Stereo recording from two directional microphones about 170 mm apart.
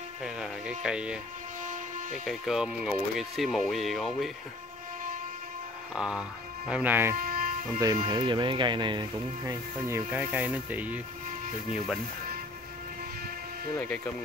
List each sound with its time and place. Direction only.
0.2 s sheep: 5° right (ahead or behind)
1.6 s a sound: 50° right (ahead or behind)
2.2 s speech: centre (ahead or behind)
5.9 s speech: 5° right (ahead or behind)
7.2 s a sound: 55° right (ahead or behind)
8.0 s speech: 25° right (ahead or behind); by 11.0 s 10° right (ahead or behind)
13.7 s speech: 10° left (ahead or behind)